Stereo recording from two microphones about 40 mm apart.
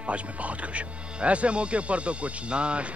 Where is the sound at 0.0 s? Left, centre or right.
Right.